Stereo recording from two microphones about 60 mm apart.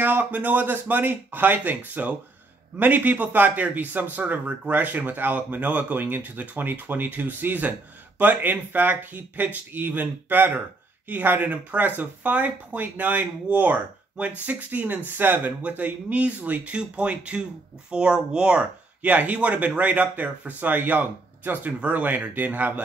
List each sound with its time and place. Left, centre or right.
0.0 s speech: right